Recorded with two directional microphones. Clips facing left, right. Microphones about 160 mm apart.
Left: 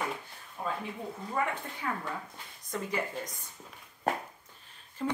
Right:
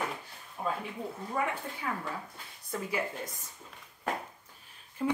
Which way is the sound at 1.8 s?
5° right (ahead or behind).